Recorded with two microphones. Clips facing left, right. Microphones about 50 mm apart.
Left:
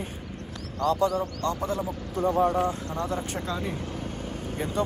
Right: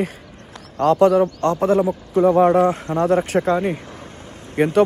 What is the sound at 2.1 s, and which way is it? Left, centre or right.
Speech, right.